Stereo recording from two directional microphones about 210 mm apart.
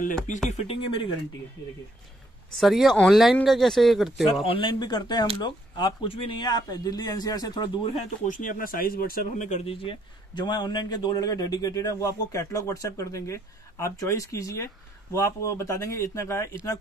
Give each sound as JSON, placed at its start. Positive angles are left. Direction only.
{"t": 0.5, "sound": "speech", "side_deg": 30}
{"t": 2.5, "sound": "speech", "side_deg": 0}
{"t": 4.5, "sound": "speech", "side_deg": 25}
{"t": 8.3, "sound": "speech", "side_deg": 40}